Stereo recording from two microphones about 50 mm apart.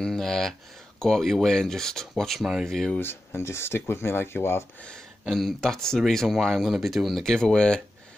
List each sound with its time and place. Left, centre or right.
0.0 s speech: centre
2.4 s speech: centre
3.0 s speech: left
5.2 s speech: centre